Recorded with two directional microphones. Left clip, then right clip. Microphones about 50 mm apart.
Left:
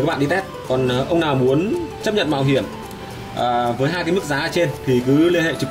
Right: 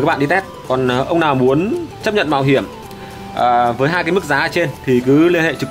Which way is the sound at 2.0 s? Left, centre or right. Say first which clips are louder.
Right 5 dB; right.